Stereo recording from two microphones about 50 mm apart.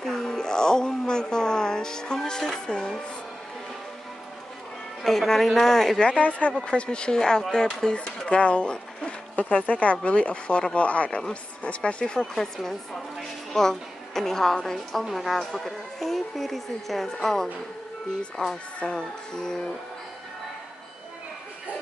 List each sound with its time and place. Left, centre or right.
0.0 s a sound: centre
5.3 s a woman's voice: centre
6.0 s a woman's voice: left; by 17.5 s centre
18.4 s a woman's voice: centre